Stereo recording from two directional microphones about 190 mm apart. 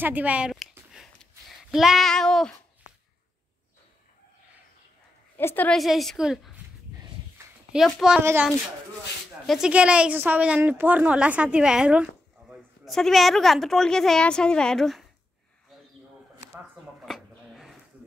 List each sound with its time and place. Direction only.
0.0 s a sound: 10° right (ahead or behind)
1.6 s a woman's voice: centre (ahead or behind)
5.4 s a woman's voice: 10° left (ahead or behind)
7.7 s a woman's voice: 5° right (ahead or behind)
9.5 s a woman's voice: 5° right (ahead or behind)
16.5 s a sound: centre (ahead or behind)